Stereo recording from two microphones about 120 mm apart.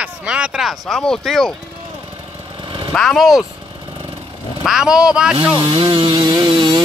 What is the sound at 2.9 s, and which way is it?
Speech, 5° left (ahead or behind).